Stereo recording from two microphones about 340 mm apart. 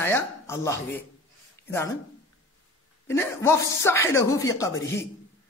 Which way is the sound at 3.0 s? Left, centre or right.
Centre.